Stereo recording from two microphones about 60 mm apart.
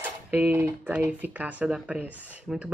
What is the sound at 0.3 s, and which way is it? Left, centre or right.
A woman's voice, right.